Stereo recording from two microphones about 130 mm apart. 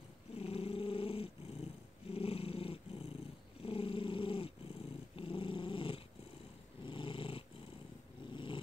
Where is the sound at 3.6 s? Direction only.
45° left (ahead or behind).